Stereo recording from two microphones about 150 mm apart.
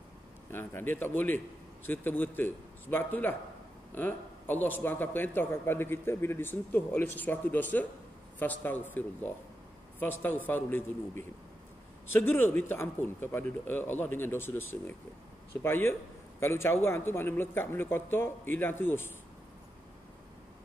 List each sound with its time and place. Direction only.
0.5 s a man's voice: 15° left (ahead or behind)